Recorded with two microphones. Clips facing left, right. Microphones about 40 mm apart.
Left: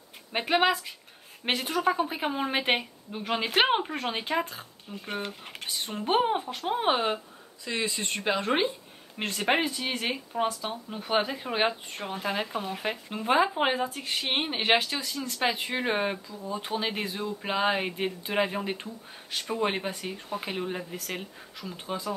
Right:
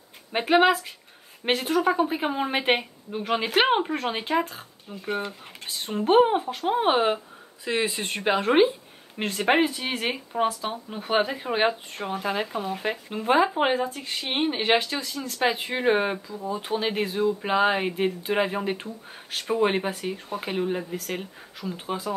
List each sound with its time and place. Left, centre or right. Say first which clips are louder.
0.3 s a woman's voice: right 5 dB; centre
7.6 s speech: right 4 dB; right
9.2 s a woman's voice: right 4 dB; centre